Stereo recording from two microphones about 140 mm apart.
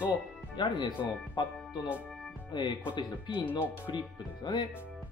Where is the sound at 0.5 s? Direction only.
30° left (ahead or behind).